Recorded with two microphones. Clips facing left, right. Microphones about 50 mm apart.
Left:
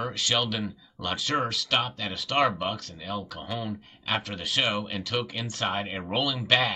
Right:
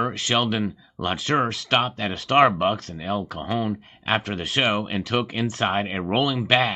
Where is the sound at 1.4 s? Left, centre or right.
Right.